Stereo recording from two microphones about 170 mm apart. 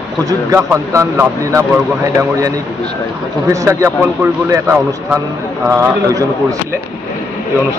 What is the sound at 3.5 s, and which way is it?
A man's voice, 20° right (ahead or behind).